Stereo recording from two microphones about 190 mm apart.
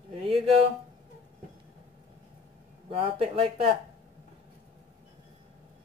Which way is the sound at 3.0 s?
30° right (ahead or behind).